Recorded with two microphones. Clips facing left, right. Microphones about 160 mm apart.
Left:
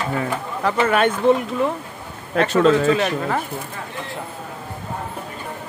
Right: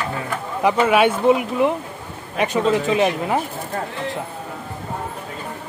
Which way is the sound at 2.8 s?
15° right (ahead or behind).